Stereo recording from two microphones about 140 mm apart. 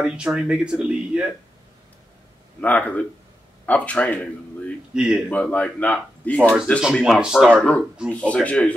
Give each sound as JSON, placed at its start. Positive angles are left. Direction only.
{"t": 0.0, "sound": "speech", "side_deg": -5}
{"t": 2.6, "sound": "speech", "side_deg": 10}
{"t": 4.9, "sound": "speech", "side_deg": -5}
{"t": 5.3, "sound": "speech", "side_deg": 10}
{"t": 6.8, "sound": "speech", "side_deg": 0}
{"t": 7.5, "sound": "speech", "side_deg": 10}